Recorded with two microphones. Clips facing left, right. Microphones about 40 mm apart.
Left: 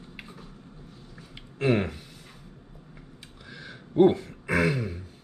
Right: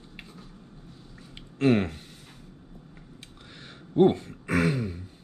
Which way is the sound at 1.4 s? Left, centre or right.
Centre.